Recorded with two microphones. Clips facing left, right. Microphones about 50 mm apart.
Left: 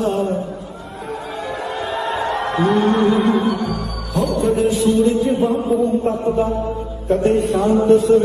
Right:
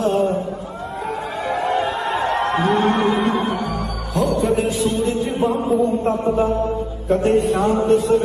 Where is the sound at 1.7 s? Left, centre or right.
Right.